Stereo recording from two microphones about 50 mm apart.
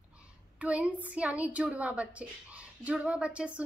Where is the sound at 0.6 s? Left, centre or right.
Right.